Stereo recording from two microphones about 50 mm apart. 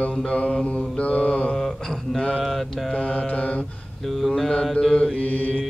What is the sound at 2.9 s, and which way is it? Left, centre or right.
Mantra, left.